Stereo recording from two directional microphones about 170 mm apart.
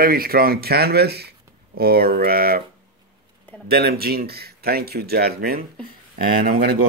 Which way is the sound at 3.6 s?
65° right (ahead or behind).